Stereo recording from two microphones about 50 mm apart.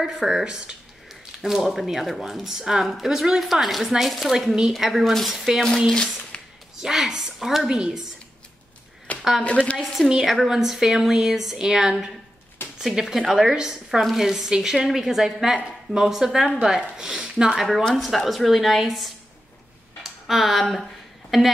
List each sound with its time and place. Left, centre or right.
0.0 s speech: centre
5.9 s a sound: centre
6.8 s speech: centre
9.4 s a woman's voice: left
10.2 s a woman's voice: centre
20.0 s a sound: centre